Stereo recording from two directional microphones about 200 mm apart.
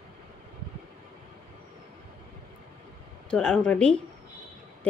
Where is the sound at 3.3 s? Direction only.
5° left (ahead or behind).